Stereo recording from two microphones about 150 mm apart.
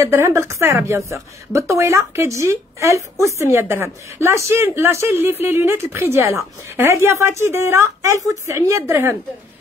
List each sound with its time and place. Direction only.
0.0 s a woman's voice: 20° right (ahead or behind)